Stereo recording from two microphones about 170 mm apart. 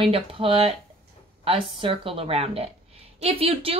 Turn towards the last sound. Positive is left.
turn(degrees=-35)  # may be behind; listen again after turning